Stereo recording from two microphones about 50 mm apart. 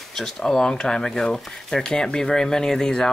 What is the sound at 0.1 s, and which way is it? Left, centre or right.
Speech, centre.